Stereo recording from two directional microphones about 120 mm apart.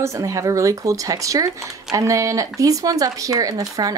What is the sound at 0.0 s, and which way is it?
Speech, 25° right (ahead or behind).